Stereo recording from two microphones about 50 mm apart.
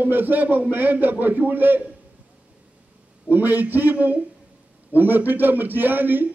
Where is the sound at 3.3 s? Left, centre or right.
Right.